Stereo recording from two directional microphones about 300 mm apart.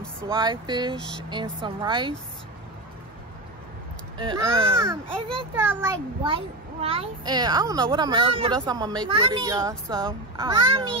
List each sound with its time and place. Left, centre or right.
0.3 s a child's voice: centre
4.2 s a child's voice: centre
5.0 s a child's voice: centre